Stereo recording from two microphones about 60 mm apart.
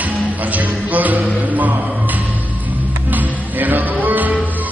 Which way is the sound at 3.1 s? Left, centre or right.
Right.